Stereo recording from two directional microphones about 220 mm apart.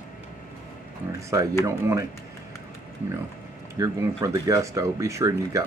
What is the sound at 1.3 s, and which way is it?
Speech, 15° right (ahead or behind).